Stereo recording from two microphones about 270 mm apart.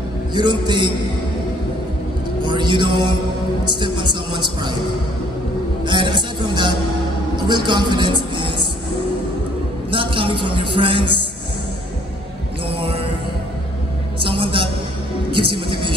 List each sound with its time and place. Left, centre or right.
0.3 s speech: centre
2.4 s speech: centre
5.9 s a man's voice: centre
9.8 s a woman's voice: centre
12.6 s music: centre
14.2 s a sound: centre
15.3 s speech: centre